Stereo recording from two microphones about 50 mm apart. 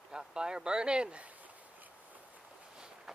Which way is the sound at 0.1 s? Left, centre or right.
Centre.